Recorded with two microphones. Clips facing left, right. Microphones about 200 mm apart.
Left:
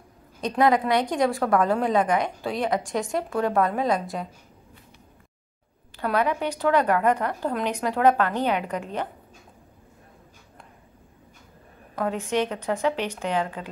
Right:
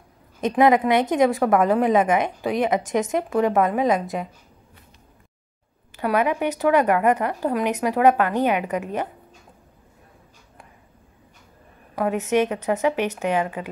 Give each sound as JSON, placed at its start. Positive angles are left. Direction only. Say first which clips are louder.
{"t": 0.4, "sound": "a woman's voice", "louder": "right 4 dB", "side_deg": -20}
{"t": 5.9, "sound": "a woman's voice", "louder": "right 3 dB", "side_deg": -15}
{"t": 11.9, "sound": "a woman's voice", "louder": "right 4 dB", "side_deg": -10}